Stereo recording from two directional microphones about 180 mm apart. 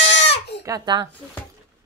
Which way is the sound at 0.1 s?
80° left.